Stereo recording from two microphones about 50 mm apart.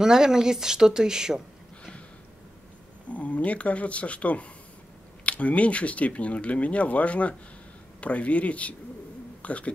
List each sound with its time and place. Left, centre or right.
0.0 s speech: centre
3.1 s speech: left